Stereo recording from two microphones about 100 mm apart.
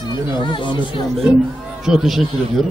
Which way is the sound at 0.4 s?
50° left (ahead or behind).